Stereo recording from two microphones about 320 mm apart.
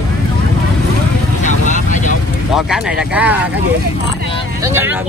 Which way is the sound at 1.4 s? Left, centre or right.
Left.